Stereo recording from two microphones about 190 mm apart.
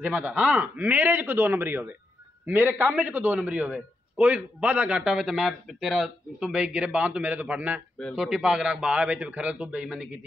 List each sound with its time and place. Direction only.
0.0 s a man's voice: 5° right (ahead or behind)